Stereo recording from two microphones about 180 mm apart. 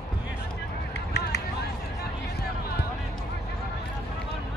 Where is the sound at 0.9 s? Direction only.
70° left (ahead or behind).